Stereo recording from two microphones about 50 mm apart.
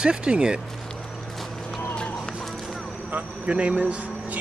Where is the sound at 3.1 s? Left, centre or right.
Right.